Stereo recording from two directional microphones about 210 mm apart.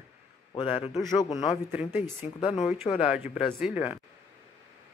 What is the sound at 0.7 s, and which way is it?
Speech, 25° left (ahead or behind).